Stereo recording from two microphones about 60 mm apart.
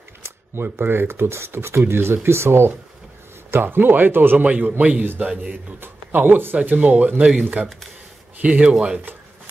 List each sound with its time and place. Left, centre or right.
0.2 s speech: right
4.5 s speech: right
5.8 s speech: right; by 9.0 s centre